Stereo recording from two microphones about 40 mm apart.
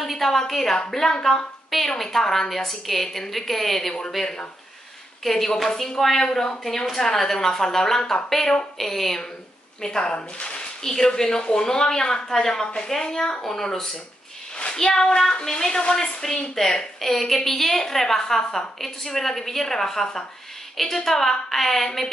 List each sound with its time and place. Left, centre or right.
0.0 s a sound: centre
0.4 s a woman's voice: centre
10.1 s speech: left
10.8 s a woman's voice: centre